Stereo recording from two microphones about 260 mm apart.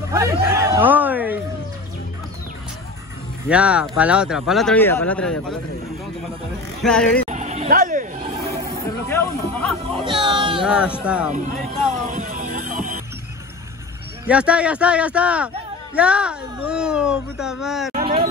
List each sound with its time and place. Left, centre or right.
0.1 s a sound: centre
3.4 s a man's voice: centre
6.8 s a man's voice: centre
7.2 s a sound: right
9.1 s music: centre
9.9 s music: centre
10.6 s a man's voice: centre
12.1 s music: right
14.2 s a man's voice: centre
18.0 s a sound: centre